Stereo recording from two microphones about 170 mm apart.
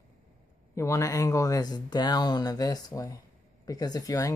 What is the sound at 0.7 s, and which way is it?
Speech, 15° left (ahead or behind).